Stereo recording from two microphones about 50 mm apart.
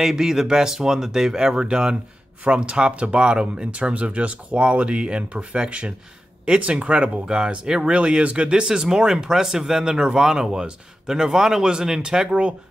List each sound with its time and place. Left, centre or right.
0.0 s speech: centre